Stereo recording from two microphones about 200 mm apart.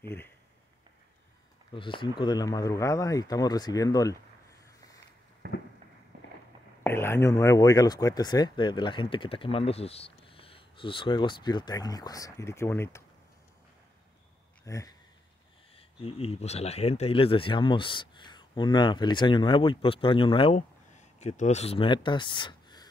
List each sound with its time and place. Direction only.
1.7 s speech: 25° left (ahead or behind)
4.6 s a sound: 15° left (ahead or behind)
5.4 s a sound: 55° right (ahead or behind)
6.8 s speech: 10° left (ahead or behind)
14.6 s speech: 15° left (ahead or behind)
15.7 s speech: 30° left (ahead or behind)